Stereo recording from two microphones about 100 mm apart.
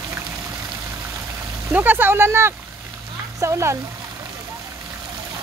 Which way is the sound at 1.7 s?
20° right (ahead or behind).